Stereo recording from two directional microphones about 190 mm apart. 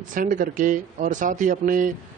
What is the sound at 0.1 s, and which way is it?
A man's voice, 45° right (ahead or behind).